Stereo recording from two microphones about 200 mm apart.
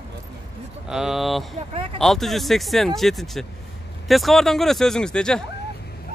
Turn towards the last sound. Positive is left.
turn(degrees=5)  # may be behind; listen again after turning